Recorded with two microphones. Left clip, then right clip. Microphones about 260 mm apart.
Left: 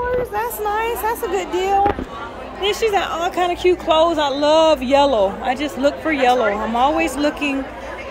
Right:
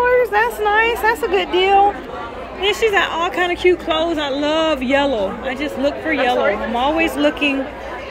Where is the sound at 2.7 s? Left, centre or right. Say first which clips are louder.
Right 2 dB; left.